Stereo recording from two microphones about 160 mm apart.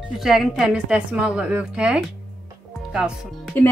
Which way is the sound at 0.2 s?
Centre (ahead or behind).